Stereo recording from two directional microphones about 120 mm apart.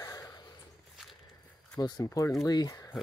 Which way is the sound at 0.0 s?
30° left (ahead or behind).